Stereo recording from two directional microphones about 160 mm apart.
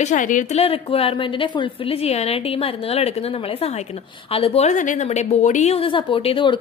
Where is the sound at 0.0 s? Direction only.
50° left (ahead or behind).